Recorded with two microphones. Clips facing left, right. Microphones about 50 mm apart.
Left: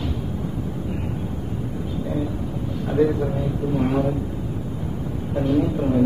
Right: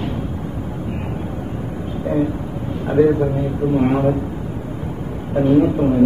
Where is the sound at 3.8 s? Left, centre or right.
Right.